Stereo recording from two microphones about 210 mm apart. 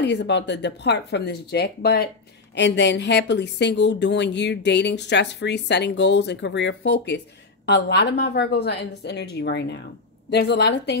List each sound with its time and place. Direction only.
0.0 s a woman's voice: 55° left (ahead or behind)